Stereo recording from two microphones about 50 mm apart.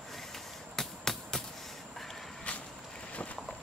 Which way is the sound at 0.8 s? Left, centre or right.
Centre.